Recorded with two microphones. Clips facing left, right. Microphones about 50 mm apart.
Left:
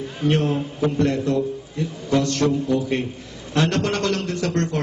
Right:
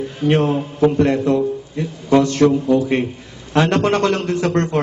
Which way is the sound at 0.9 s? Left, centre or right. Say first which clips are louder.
Right 5 dB; right.